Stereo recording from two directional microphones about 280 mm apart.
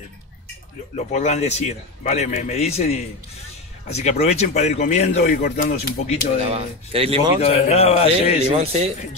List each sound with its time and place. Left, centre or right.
0.9 s speech: left
6.5 s speech: centre
7.3 s speech: left
8.5 s speech: right